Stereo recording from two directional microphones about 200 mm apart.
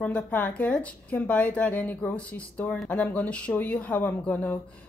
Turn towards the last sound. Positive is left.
turn(degrees=10)  # may be behind; listen again after turning